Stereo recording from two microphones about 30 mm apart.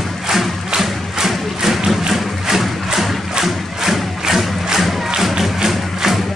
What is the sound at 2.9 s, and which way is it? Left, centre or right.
Music, centre.